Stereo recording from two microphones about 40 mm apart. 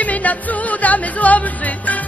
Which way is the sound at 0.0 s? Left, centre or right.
Left.